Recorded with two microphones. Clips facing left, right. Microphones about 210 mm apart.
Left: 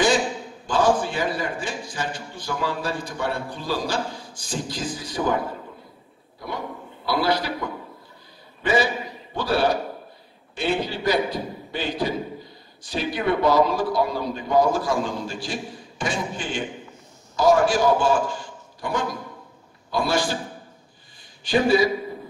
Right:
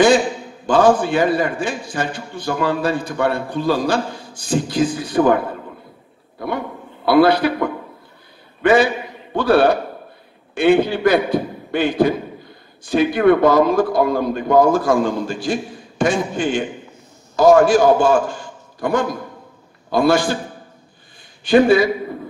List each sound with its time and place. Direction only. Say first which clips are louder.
0.7 s a man's voice: right 7 dB; 60° right (ahead or behind)
6.4 s a man's voice: right 7 dB; 60° right (ahead or behind)
21.5 s a man's voice: right 6 dB; 55° right (ahead or behind)